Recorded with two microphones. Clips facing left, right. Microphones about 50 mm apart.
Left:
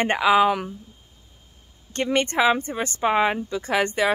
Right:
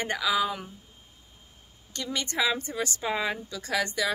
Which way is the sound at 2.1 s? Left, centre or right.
Left.